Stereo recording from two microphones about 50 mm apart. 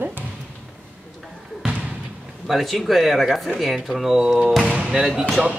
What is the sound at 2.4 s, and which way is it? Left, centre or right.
Speech, centre.